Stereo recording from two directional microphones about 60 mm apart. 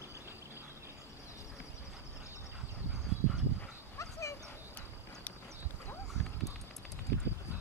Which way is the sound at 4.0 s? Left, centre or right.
Left.